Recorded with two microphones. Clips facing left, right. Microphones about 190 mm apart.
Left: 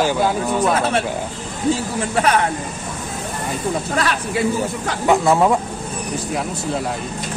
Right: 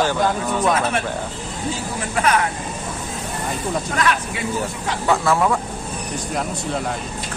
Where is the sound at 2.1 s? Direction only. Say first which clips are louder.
Left 1 dB; 30° left (ahead or behind).